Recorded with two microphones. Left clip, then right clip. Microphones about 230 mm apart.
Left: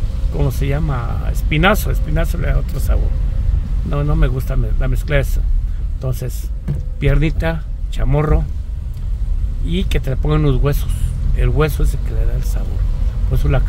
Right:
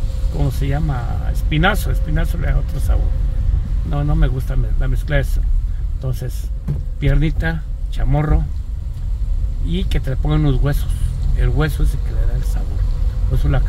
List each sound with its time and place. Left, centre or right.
0.4 s speech: centre
9.7 s speech: centre